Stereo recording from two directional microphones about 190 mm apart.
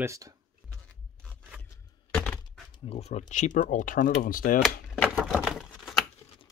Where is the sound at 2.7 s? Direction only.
30° left (ahead or behind); by 4.5 s 50° left (ahead or behind).